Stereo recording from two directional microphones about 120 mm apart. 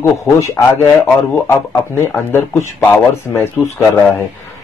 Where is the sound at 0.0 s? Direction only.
20° left (ahead or behind).